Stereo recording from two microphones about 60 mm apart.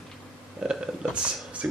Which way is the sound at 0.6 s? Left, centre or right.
Centre.